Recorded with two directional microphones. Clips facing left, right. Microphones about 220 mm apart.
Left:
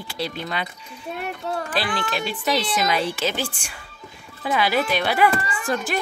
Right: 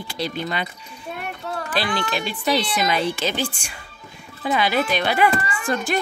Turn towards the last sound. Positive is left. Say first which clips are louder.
# right 2 dB
turn(degrees=5)  # may be behind; listen again after turning